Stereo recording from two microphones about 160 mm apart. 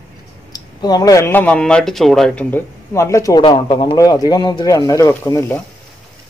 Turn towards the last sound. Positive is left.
turn(degrees=15)  # may be behind; listen again after turning